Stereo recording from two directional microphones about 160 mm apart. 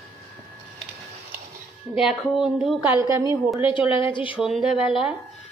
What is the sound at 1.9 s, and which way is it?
Speech, 5° right (ahead or behind).